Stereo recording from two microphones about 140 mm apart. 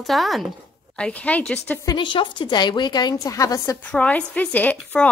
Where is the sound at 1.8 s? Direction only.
35° left (ahead or behind).